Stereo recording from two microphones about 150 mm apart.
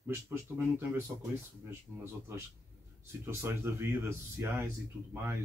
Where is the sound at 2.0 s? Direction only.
15° right (ahead or behind).